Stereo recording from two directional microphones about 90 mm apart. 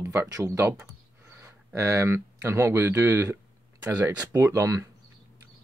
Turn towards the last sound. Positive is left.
turn(degrees=-35)  # may be behind; listen again after turning